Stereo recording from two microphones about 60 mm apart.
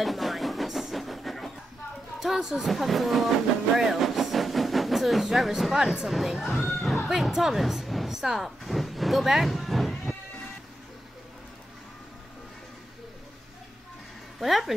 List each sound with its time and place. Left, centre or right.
0.0 s train: centre
2.1 s speech: centre
14.4 s speech: centre